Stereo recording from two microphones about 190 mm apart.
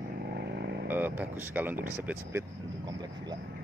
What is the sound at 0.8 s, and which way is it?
Speech, 10° right (ahead or behind).